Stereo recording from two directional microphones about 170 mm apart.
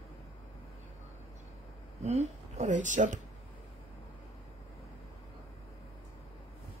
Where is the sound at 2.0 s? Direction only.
40° right (ahead or behind).